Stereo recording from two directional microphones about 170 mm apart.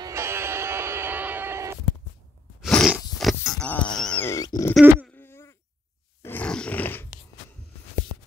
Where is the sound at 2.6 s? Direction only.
Centre (ahead or behind).